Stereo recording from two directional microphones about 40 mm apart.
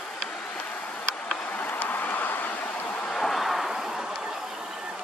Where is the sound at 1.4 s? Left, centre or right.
Left.